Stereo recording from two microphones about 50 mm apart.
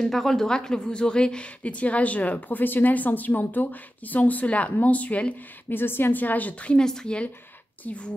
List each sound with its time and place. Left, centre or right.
0.0 s a woman's voice: centre; by 5.3 s left
5.7 s a woman's voice: left
6.8 s a woman's voice: centre